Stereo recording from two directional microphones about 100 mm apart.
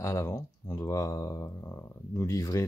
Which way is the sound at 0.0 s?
30° left (ahead or behind).